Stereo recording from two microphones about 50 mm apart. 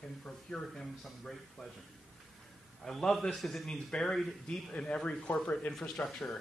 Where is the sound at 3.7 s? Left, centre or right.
Centre; by 6.1 s left.